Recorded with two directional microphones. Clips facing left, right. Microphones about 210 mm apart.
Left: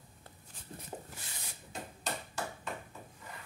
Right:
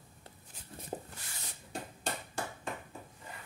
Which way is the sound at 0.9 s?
30° right (ahead or behind).